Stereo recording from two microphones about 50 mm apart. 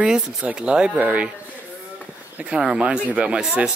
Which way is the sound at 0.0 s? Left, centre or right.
Centre.